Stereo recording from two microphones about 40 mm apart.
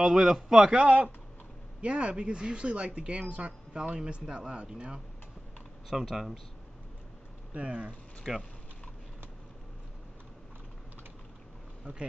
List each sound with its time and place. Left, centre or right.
0.0 s speech: centre
0.7 s speech: right
5.9 s speech: centre
7.5 s speech: right
8.3 s speech: centre
11.8 s speech: right